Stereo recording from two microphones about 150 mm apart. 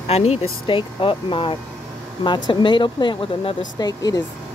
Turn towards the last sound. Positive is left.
turn(degrees=25)  # may be behind; listen again after turning